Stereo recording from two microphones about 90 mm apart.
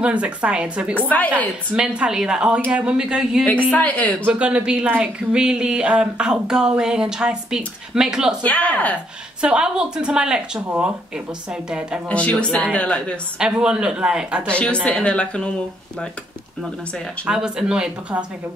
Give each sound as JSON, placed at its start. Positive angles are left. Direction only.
{"t": 0.0, "sound": "speech", "side_deg": -15}
{"t": 0.9, "sound": "a woman's voice", "side_deg": 20}
{"t": 1.8, "sound": "speech", "side_deg": -10}
{"t": 3.7, "sound": "a woman's voice", "side_deg": 15}
{"t": 4.3, "sound": "speech", "side_deg": -15}
{"t": 8.4, "sound": "a woman's voice", "side_deg": 15}
{"t": 9.4, "sound": "speech", "side_deg": -10}
{"t": 12.1, "sound": "a woman's voice", "side_deg": 15}
{"t": 13.4, "sound": "speech", "side_deg": -10}
{"t": 14.5, "sound": "a woman's voice", "side_deg": 10}
{"t": 17.3, "sound": "speech", "side_deg": -5}